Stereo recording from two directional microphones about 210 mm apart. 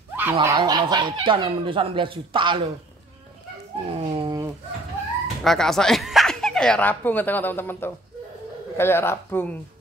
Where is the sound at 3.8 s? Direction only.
25° right (ahead or behind).